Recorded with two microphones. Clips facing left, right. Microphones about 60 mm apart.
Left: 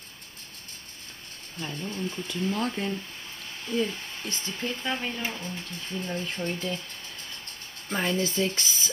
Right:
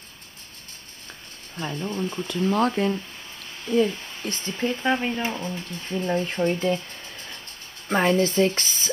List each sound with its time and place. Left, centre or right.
1.8 s speech: right
2.2 s speech: right
4.2 s speech: right
7.9 s speech: right